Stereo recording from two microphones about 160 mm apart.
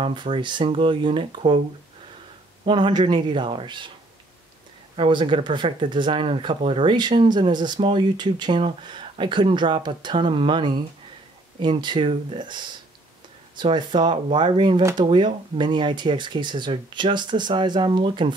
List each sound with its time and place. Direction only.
0.0 s speech: 30° right (ahead or behind)
2.6 s speech: 30° right (ahead or behind)
4.9 s speech: 30° right (ahead or behind)
14.8 s speech: 20° right (ahead or behind)
15.0 s speech: 30° right (ahead or behind)